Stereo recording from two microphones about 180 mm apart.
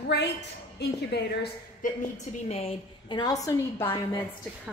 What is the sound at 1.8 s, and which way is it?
Speech, 50° left (ahead or behind).